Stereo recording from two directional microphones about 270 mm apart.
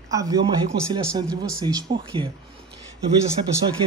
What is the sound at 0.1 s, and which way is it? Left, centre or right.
Speech, centre.